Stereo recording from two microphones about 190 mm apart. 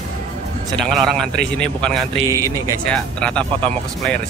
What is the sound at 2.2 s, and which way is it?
Speech, 15° right (ahead or behind).